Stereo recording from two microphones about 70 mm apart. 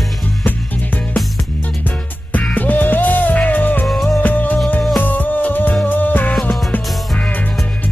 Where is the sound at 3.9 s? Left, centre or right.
Centre.